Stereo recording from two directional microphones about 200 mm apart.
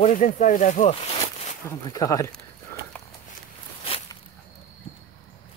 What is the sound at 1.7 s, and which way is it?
Speech, 15° left (ahead or behind).